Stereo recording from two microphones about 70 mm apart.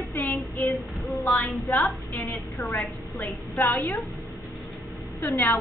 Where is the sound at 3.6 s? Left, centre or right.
Left.